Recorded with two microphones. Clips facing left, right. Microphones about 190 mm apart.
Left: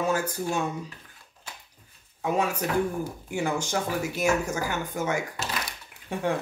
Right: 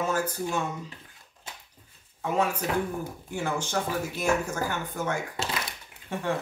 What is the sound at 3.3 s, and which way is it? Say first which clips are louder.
Speech: left 2 dB; 15° left (ahead or behind).